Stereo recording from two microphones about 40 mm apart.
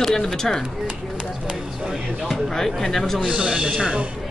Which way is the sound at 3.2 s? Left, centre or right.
Right.